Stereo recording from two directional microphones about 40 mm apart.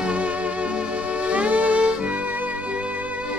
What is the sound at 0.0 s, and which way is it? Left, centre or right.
Music, right.